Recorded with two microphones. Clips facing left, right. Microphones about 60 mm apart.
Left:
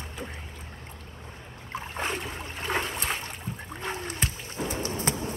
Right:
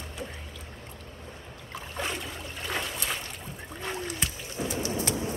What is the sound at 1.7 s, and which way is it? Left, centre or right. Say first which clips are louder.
Boat: left 2 dB; left.